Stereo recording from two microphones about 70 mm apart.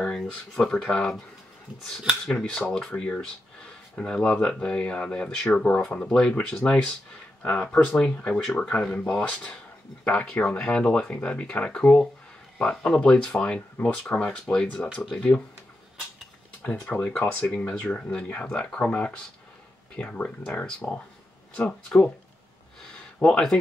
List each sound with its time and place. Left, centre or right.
0.0 s speech: centre
2.2 s speech: centre
16.6 s speech: left